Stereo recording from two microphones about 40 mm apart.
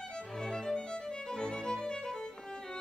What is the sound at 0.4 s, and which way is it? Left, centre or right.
Music, centre.